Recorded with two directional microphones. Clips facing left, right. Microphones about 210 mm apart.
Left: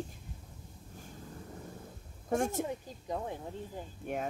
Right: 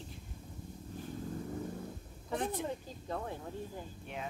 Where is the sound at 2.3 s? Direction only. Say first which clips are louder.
Left 5 dB; 45° left (ahead or behind).